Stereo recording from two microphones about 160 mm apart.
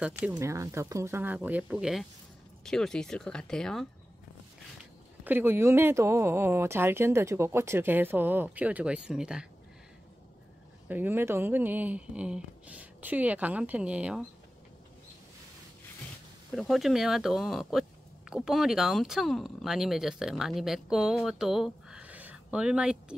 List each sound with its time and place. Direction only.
0.3 s speech: 20° right (ahead or behind); by 3.8 s 5° left (ahead or behind)
5.2 s speech: 10° right (ahead or behind)
10.9 s speech: 10° right (ahead or behind)
16.5 s speech: centre (ahead or behind)